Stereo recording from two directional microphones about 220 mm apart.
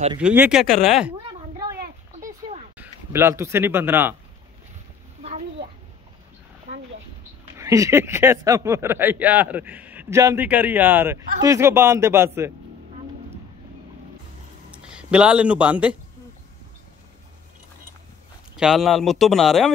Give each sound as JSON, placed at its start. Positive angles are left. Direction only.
{"t": 0.2, "sound": "speech", "side_deg": -5}
{"t": 1.8, "sound": "a sound", "side_deg": -35}
{"t": 2.8, "sound": "speech", "side_deg": -10}
{"t": 5.2, "sound": "a sound", "side_deg": -30}
{"t": 7.5, "sound": "speech", "side_deg": -15}
{"t": 14.7, "sound": "speech", "side_deg": -5}
{"t": 18.6, "sound": "speech", "side_deg": 0}